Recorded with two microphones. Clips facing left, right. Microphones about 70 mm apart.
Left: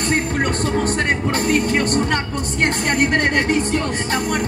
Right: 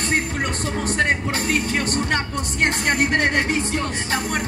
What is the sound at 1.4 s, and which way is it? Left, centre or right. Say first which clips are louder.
A woman's voice: left 5 dB; left.